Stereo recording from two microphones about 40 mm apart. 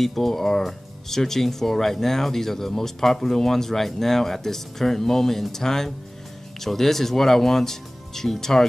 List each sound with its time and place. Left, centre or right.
0.0 s speech: centre